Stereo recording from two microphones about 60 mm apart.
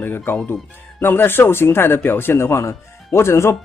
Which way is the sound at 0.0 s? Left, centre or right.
Left.